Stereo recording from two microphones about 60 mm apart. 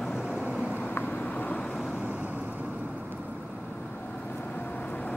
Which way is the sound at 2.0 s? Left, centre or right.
Centre.